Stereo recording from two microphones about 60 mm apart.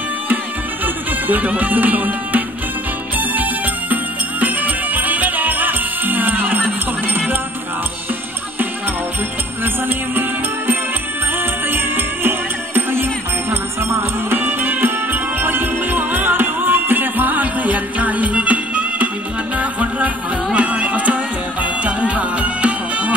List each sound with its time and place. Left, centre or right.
0.8 s music: right
11.3 s music: right